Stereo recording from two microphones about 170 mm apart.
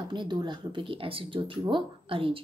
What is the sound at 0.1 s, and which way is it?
Speech, 25° right (ahead or behind).